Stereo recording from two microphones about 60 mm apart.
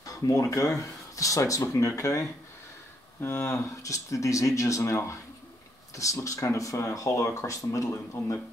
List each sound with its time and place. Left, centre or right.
0.0 s speech: left
3.2 s speech: left